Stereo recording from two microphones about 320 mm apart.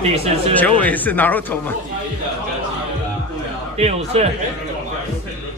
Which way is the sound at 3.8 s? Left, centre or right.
Centre.